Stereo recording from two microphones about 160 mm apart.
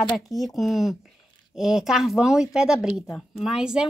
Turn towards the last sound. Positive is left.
turn(degrees=-5)  # may be behind; listen again after turning